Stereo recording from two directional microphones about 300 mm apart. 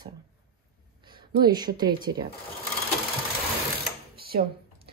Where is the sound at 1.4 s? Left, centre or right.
Centre.